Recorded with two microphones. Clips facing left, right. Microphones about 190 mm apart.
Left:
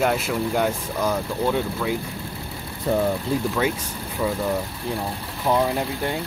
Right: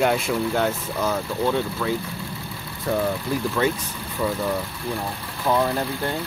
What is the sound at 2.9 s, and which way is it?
Speech, 20° left (ahead or behind).